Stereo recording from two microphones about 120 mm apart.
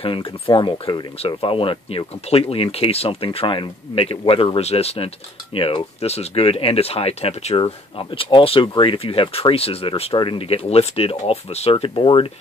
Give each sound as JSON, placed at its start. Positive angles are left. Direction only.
{"t": 0.0, "sound": "speech", "side_deg": 50}